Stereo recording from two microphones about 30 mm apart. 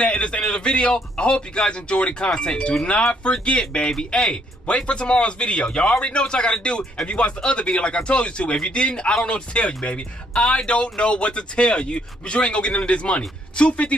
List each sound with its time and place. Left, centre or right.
0.0 s speech: left
4.1 s a man's voice: left
4.7 s speech: left